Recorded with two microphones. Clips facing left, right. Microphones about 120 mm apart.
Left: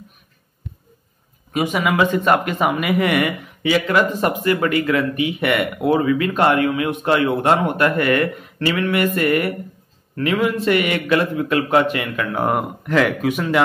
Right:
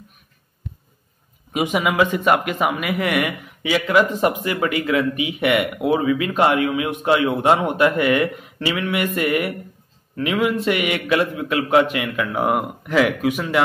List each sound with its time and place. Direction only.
1.5 s speech: 15° right (ahead or behind)